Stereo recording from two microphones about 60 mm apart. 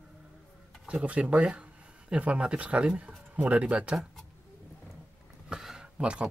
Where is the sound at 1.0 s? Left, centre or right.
Right.